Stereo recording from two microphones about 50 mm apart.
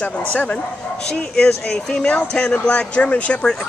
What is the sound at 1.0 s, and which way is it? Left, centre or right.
Speech, centre.